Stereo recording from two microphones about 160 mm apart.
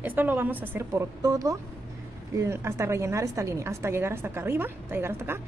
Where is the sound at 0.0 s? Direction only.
10° right (ahead or behind).